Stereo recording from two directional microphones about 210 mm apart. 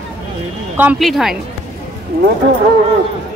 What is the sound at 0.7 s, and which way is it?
Speech, 5° right (ahead or behind).